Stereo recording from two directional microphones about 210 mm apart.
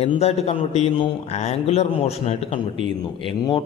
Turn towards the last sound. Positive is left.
turn(degrees=25)  # may be behind; listen again after turning